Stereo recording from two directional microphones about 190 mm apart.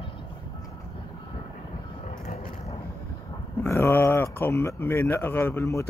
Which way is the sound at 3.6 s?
10° left (ahead or behind).